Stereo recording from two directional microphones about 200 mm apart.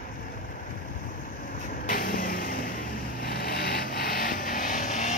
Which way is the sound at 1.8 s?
45° left (ahead or behind).